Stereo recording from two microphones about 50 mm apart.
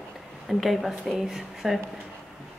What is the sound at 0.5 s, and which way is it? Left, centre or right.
Speech, centre.